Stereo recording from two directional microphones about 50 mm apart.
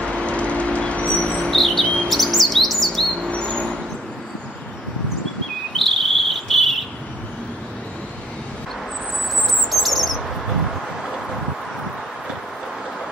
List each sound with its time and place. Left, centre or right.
0.0 s vehicle: left
1.5 s chirp: centre
2.0 s bird: centre
3.3 s mouse: centre
5.9 s cricket: centre
9.7 s bird: centre